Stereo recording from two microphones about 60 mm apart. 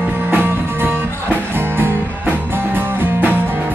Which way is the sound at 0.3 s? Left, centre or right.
Right.